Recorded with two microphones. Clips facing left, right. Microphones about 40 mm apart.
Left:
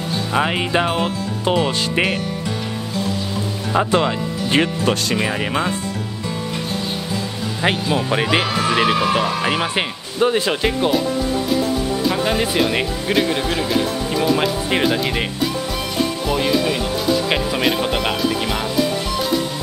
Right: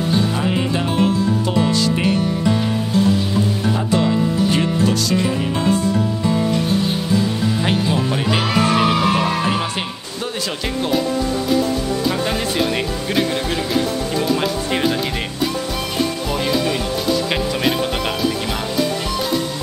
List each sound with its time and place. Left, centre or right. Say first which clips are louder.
0.3 s music: left 1 dB; left
3.7 s speech: left 4 dB; left
7.6 s speech: left 4 dB; left
12.1 s speech: left 2 dB; centre
16.3 s speech: left 3 dB; centre